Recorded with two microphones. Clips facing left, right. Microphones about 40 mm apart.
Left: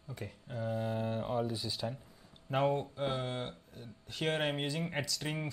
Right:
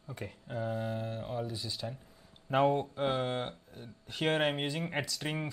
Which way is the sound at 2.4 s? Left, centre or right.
Centre.